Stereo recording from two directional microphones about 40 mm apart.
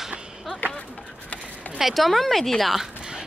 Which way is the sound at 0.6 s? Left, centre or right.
Left.